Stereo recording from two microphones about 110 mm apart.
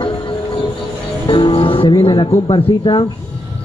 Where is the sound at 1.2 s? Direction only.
50° left (ahead or behind).